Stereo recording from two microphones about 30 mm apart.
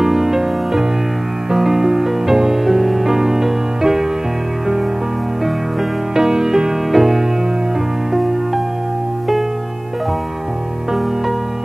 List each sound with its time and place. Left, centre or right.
0.0 s music: centre
2.6 s music: centre
6.1 s music: centre
6.9 s music: centre